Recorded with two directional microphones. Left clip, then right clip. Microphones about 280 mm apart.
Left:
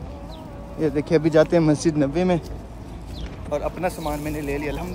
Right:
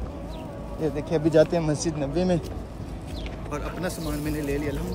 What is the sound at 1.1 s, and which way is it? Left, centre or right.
Speech, left.